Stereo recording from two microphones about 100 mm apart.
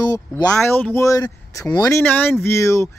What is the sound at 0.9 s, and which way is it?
Speech, 35° left (ahead or behind).